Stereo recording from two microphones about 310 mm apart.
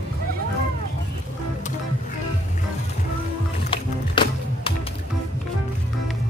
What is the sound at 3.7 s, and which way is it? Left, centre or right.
Music, centre.